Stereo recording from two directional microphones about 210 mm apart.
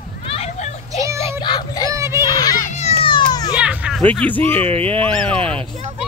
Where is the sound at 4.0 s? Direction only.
5° left (ahead or behind).